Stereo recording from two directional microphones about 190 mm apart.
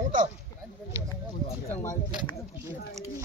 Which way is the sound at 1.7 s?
15° left (ahead or behind).